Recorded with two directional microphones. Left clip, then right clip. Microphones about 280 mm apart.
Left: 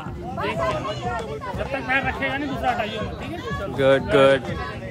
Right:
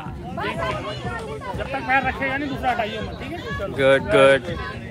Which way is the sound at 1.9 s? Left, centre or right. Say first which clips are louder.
Right 3 dB; centre.